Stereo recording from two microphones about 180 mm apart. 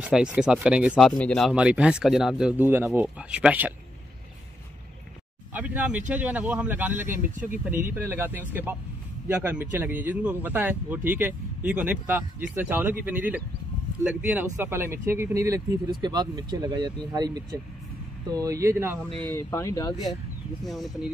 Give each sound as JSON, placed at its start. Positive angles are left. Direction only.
{"t": 0.0, "sound": "speech", "side_deg": -5}
{"t": 5.5, "sound": "speech", "side_deg": -10}
{"t": 19.2, "sound": "speech", "side_deg": 15}
{"t": 20.6, "sound": "speech", "side_deg": 0}